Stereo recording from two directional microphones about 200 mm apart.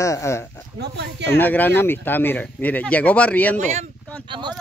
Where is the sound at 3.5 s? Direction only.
35° right (ahead or behind).